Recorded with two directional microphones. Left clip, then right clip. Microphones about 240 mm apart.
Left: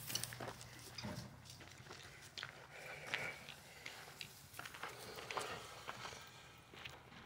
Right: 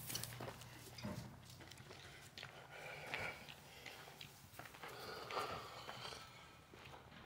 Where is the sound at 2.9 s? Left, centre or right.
Centre.